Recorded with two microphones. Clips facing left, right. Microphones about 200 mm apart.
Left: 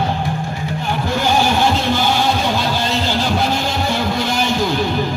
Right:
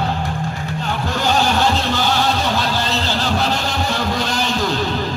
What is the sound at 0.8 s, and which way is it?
Music, 10° left (ahead or behind).